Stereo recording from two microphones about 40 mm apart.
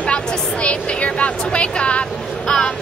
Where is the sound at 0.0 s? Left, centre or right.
Left.